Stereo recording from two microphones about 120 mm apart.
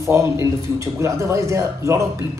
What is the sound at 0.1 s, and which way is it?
Speech, 25° right (ahead or behind).